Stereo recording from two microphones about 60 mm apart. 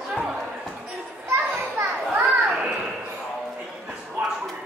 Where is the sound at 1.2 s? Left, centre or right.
Right.